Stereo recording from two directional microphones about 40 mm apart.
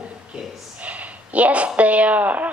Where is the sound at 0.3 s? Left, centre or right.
Right.